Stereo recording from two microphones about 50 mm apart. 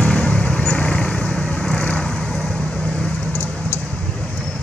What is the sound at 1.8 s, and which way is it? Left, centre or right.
Vehicle, left.